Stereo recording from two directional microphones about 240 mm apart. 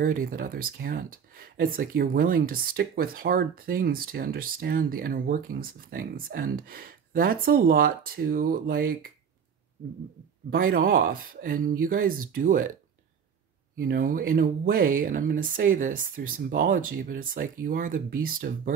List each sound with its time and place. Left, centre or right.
0.0 s speech: right
10.5 s speech: right
13.7 s speech: right